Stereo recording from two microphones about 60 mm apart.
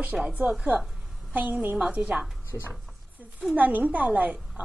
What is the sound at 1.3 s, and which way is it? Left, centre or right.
Speech, right.